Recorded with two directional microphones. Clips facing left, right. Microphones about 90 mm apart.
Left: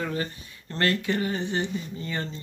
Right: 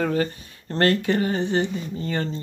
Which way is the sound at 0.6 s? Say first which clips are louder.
Right 5 dB; 45° right (ahead or behind).